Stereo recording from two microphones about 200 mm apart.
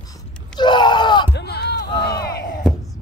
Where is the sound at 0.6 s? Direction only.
20° left (ahead or behind).